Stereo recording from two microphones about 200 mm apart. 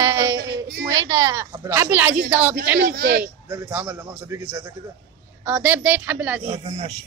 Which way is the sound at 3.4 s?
15° right (ahead or behind).